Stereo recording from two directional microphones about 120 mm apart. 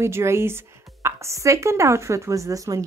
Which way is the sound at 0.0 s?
20° right (ahead or behind).